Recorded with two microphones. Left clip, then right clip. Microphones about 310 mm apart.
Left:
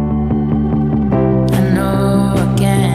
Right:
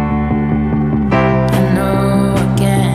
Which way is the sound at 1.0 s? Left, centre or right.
Centre.